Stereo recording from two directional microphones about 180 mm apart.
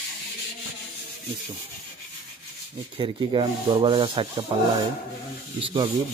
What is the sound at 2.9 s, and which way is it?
Speech, 30° right (ahead or behind).